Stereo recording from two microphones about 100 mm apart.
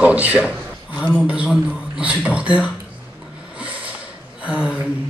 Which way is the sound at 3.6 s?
15° right (ahead or behind).